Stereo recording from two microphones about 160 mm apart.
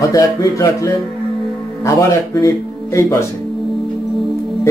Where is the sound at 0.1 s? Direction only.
20° left (ahead or behind).